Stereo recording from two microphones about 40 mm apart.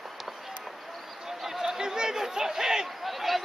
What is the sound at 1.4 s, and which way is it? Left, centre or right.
Chatter, centre.